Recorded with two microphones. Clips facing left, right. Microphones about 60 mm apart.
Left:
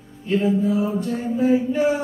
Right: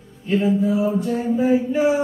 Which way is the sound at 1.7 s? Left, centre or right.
Centre.